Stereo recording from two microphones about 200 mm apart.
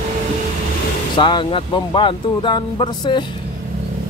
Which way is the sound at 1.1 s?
25° left (ahead or behind).